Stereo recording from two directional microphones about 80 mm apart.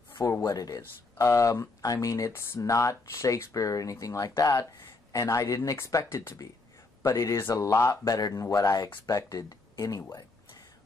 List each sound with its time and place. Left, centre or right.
0.4 s speech: left